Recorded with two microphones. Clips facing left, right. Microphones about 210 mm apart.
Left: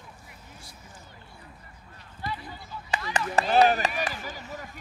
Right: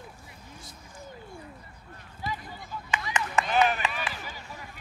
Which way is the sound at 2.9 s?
35° left (ahead or behind).